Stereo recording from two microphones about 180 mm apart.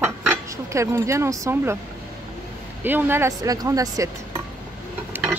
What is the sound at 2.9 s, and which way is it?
Speech, 10° right (ahead or behind).